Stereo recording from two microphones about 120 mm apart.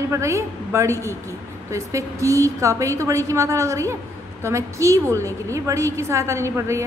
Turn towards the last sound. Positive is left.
turn(degrees=-25)  # may be behind; listen again after turning